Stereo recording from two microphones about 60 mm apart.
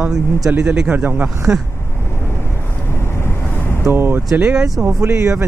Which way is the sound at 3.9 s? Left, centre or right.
Right.